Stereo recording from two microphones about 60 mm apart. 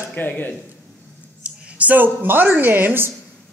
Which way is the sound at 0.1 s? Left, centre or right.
Left.